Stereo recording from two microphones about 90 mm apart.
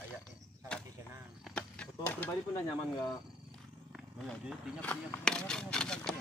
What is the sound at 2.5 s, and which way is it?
Speech, 45° left (ahead or behind).